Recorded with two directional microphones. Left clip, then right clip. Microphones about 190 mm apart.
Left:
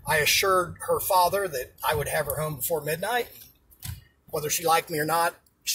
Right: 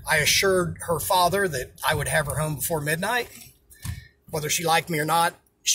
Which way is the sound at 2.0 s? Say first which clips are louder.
Right 3 dB; 20° right (ahead or behind).